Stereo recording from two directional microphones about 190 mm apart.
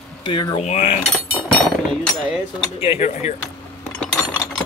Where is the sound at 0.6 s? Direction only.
35° left (ahead or behind).